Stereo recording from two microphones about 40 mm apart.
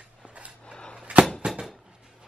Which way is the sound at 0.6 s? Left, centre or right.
Left.